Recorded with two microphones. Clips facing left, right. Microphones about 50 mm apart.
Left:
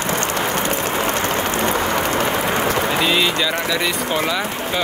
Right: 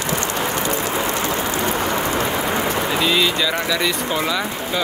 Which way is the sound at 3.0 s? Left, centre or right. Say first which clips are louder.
Even; centre.